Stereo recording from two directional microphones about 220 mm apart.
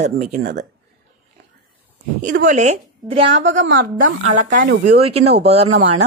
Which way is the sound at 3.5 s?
40° right (ahead or behind).